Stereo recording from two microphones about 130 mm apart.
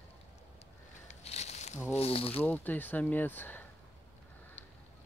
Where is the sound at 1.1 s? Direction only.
60° left (ahead or behind).